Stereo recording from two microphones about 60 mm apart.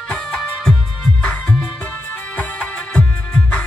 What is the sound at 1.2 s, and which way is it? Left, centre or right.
Music, left.